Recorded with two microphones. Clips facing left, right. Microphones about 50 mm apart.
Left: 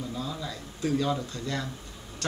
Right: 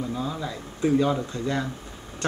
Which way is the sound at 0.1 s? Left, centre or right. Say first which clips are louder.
Right 5 dB; centre.